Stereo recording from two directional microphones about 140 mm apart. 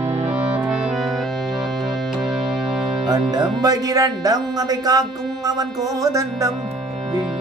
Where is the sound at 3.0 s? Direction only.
25° right (ahead or behind).